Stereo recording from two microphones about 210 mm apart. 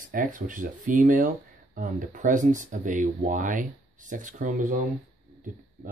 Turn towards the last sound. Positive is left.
turn(degrees=-35)  # may be behind; listen again after turning